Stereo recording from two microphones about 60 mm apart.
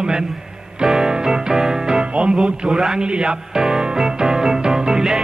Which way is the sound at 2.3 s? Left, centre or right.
Centre.